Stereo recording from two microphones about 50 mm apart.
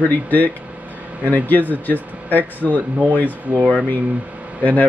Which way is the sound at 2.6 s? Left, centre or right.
Right.